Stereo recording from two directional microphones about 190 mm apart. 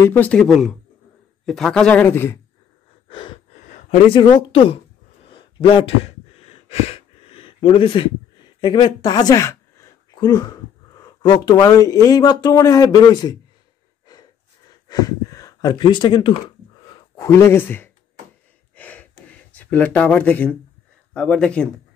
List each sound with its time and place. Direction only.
0.0 s speech: 10° left (ahead or behind)
3.1 s wheeze: 25° left (ahead or behind)
4.1 s speech: 25° left (ahead or behind)
5.3 s a sound: 25° left (ahead or behind)
8.5 s speech: 25° left (ahead or behind)
14.9 s speech: 20° left (ahead or behind)
18.8 s a sound: 10° left (ahead or behind)
19.3 s speech: 10° left (ahead or behind)